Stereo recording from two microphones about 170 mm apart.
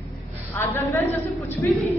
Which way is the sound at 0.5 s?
15° left (ahead or behind).